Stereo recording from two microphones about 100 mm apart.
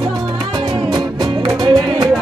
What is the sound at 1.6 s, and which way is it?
Music, 40° right (ahead or behind).